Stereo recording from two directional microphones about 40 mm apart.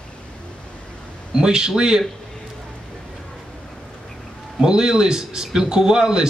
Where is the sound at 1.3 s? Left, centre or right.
Centre.